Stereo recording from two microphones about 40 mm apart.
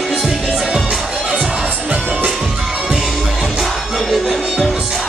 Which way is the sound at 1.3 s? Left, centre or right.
Right.